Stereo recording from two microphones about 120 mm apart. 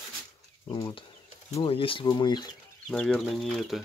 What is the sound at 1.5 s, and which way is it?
Speech, 55° left (ahead or behind).